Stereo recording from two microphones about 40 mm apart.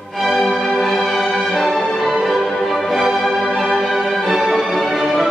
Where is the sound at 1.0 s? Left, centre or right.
Centre.